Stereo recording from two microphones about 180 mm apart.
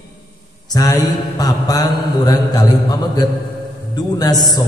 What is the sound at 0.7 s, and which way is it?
Mantra, 20° left (ahead or behind).